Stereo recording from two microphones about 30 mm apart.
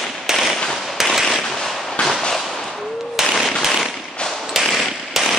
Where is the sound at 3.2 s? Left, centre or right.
Centre.